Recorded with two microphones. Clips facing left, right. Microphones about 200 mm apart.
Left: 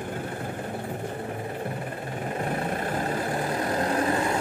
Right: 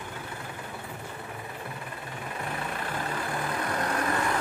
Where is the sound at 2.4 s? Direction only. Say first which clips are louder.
Left 6 dB; 40° left (ahead or behind).